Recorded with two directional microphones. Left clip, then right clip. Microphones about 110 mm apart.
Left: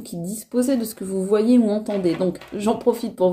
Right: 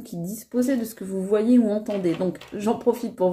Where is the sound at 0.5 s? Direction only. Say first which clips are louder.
Left 3 dB; 25° left (ahead or behind).